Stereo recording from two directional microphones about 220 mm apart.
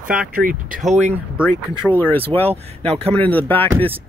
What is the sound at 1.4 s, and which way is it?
Speech, 10° left (ahead or behind).